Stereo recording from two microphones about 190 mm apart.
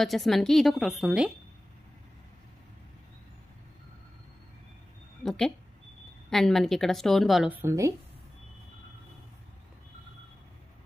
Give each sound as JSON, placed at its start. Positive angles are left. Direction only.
{"t": 0.0, "sound": "a woman's voice", "side_deg": 0}
{"t": 5.2, "sound": "a woman's voice", "side_deg": 0}